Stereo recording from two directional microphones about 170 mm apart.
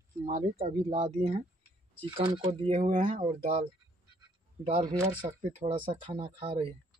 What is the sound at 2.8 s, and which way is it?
Speech, 50° right (ahead or behind).